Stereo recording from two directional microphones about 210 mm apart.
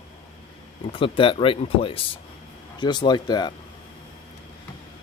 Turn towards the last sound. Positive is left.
turn(degrees=20)  # may be behind; listen again after turning